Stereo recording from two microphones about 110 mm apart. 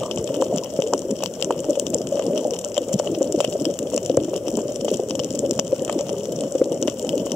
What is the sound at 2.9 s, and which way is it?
Water, 5° right (ahead or behind).